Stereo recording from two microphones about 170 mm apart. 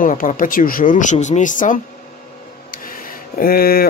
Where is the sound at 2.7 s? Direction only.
55° left (ahead or behind).